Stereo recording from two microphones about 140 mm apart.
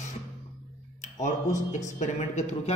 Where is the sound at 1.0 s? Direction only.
60° left (ahead or behind).